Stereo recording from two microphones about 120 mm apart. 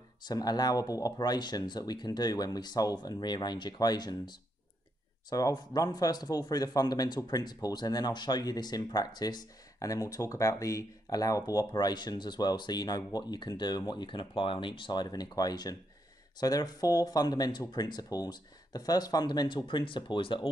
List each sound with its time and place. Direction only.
0.2 s speech: 35° left (ahead or behind)